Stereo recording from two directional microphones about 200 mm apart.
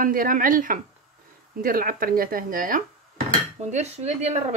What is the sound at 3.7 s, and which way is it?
Speech, 35° right (ahead or behind).